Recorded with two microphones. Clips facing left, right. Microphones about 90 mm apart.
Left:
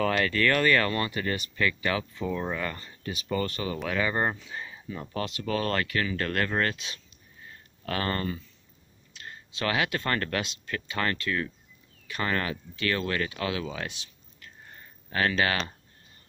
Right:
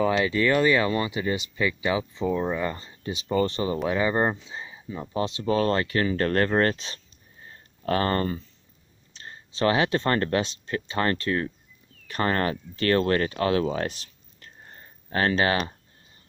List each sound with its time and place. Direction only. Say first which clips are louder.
0.1 s speech: right 3 dB; 15° right (ahead or behind); by 15.5 s 30° right (ahead or behind)